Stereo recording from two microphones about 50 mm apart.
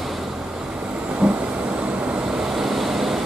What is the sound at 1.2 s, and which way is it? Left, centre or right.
Vehicle, right.